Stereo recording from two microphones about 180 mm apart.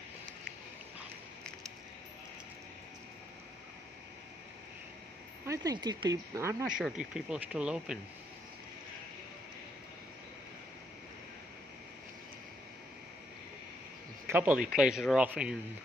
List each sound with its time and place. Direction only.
5.4 s speech: 20° right (ahead or behind)
6.8 s speech: 5° right (ahead or behind)
14.2 s speech: 10° right (ahead or behind)